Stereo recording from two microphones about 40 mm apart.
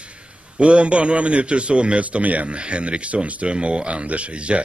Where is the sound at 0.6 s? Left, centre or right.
Right.